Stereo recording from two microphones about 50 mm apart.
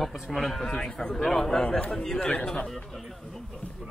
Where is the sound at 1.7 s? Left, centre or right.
Centre.